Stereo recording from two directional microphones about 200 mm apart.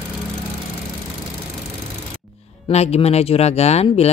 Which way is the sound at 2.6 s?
30° left (ahead or behind).